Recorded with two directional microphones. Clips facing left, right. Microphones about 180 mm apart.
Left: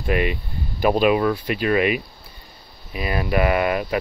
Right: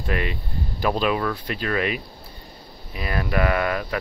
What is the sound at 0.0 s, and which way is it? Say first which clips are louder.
Speech: left 5 dB; 15° left (ahead or behind).